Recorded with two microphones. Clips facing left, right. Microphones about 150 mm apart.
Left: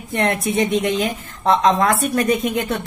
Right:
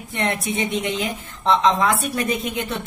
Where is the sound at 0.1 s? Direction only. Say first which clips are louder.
Left 5 dB; 45° left (ahead or behind).